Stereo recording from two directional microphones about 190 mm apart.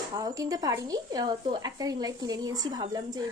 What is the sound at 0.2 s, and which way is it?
A woman's voice, 20° right (ahead or behind).